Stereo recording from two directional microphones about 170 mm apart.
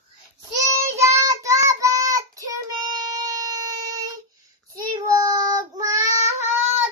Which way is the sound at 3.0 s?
20° right (ahead or behind).